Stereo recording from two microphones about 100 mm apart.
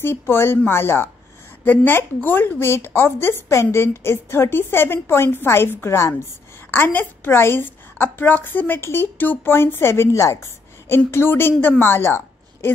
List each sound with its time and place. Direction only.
0.0 s a woman's voice: 25° left (ahead or behind)